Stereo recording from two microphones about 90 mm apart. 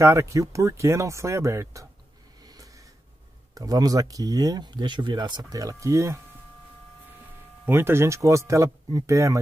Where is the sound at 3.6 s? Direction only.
45° right (ahead or behind).